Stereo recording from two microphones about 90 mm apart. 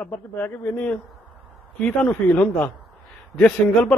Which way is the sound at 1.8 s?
10° left (ahead or behind).